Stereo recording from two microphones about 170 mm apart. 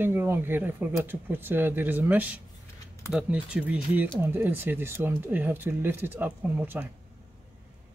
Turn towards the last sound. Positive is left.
turn(degrees=-10)  # may be behind; listen again after turning